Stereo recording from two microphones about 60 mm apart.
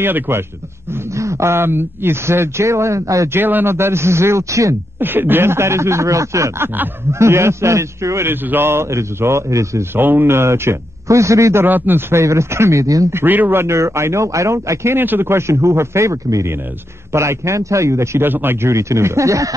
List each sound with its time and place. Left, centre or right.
0.0 s a man's voice: right
1.1 s a man's voice: right
3.3 s a man's voice: right
5.0 s a man's voice: right
8.3 s a man's voice: right
9.9 s a man's voice: right
11.6 s a man's voice: right
12.1 s speech: right
13.1 s a man's voice: right
13.6 s a man's voice: right
15.0 s a man's voice: right
17.1 s a man's voice: right
18.2 s a man's voice: right